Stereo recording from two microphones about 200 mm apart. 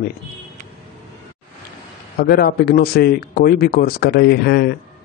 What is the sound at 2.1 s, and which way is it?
Speech, 50° left (ahead or behind).